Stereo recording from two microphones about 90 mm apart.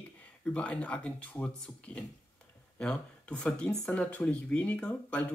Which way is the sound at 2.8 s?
10° left (ahead or behind).